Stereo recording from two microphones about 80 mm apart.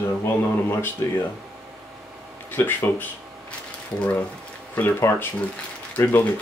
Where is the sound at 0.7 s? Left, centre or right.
Left.